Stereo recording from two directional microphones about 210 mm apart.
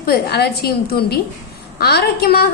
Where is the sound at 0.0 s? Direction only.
50° left (ahead or behind).